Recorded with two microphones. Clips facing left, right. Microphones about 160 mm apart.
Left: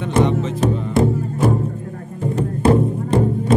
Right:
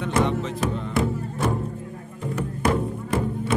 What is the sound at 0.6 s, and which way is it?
Music, 35° left (ahead or behind).